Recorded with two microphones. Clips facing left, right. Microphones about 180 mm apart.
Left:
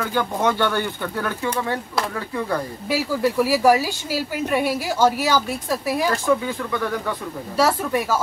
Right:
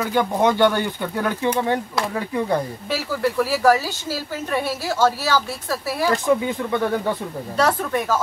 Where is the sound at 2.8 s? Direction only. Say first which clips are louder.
Left 5 dB; 10° left (ahead or behind).